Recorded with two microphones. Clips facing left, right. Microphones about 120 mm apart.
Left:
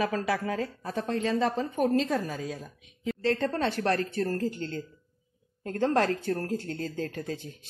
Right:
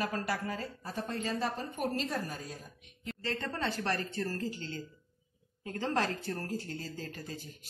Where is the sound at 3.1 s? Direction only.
65° left (ahead or behind).